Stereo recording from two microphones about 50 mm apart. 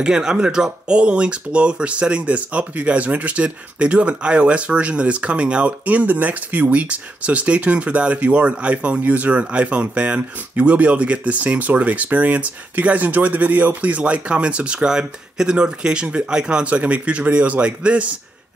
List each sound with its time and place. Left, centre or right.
0.0 s speech: centre